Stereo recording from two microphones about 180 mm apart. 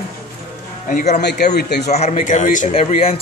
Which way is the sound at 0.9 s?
50° left (ahead or behind).